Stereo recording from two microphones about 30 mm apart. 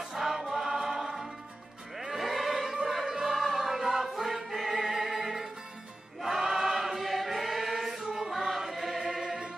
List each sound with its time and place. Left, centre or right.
0.1 s choir: centre
2.0 s music: centre
3.1 s choir: centre
8.1 s music: centre
9.2 s music: centre